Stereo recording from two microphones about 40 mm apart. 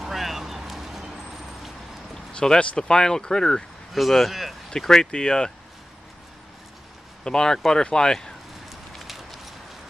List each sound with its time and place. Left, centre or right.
0.0 s vehicle: centre
2.6 s speech: left
3.9 s speech: centre
4.6 s speech: centre
7.2 s speech: centre
8.6 s a sound: centre